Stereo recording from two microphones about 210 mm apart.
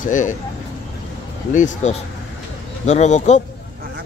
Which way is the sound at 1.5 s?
35° left (ahead or behind).